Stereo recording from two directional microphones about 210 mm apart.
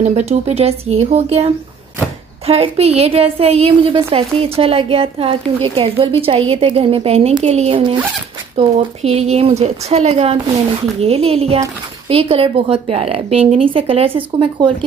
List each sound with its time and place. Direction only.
0.0 s a woman's voice: 30° right (ahead or behind)